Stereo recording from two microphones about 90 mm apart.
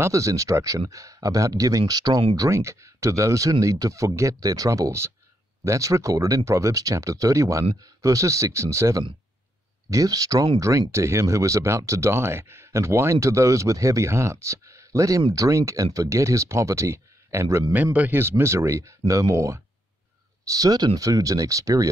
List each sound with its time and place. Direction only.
0.0 s speech: 35° right (ahead or behind)
2.3 s speech: 35° right (ahead or behind)
17.9 s speech: 20° right (ahead or behind); by 21.8 s 40° right (ahead or behind)